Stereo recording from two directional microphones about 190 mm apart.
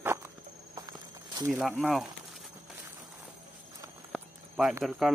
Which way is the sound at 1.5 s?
5° right (ahead or behind).